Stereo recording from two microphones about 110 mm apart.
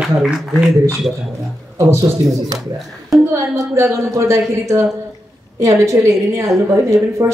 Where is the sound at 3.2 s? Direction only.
25° right (ahead or behind).